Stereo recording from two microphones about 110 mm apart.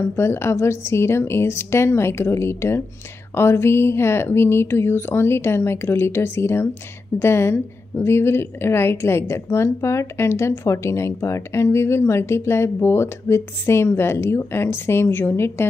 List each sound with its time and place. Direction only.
0.1 s a woman's voice: 25° left (ahead or behind)